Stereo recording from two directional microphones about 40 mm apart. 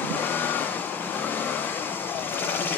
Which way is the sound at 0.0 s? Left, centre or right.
Left.